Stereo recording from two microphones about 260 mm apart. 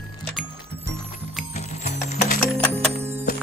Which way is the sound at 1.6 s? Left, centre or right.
Left.